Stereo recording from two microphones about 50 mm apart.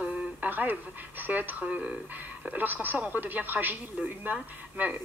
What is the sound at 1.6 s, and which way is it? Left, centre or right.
Speech, right.